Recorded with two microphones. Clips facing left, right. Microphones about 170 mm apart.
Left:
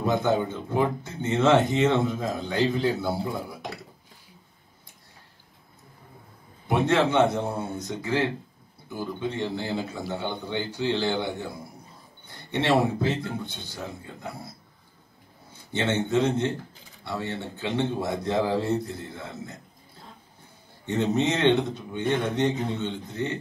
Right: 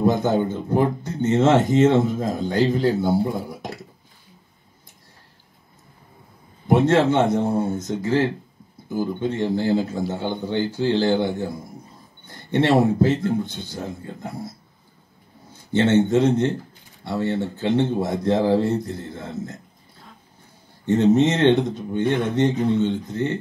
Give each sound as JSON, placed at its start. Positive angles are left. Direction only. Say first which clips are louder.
{"t": 0.0, "sound": "speech", "louder": "right 4 dB", "side_deg": -45}
{"t": 3.3, "sound": "a sound", "louder": "right 4 dB", "side_deg": -45}
{"t": 6.7, "sound": "speech", "louder": "right 5 dB", "side_deg": -50}
{"t": 16.1, "sound": "speech", "louder": "right 5 dB", "side_deg": -50}
{"t": 20.8, "sound": "speech", "louder": "right 8 dB", "side_deg": -45}